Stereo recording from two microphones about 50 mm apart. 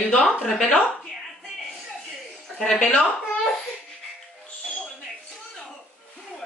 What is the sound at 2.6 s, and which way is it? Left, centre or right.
Speech, centre.